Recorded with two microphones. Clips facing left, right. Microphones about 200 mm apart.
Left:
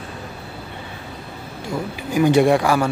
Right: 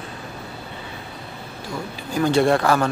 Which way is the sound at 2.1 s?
15° left (ahead or behind).